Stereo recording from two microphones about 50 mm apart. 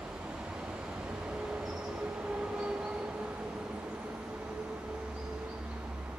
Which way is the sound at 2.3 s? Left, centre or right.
Centre.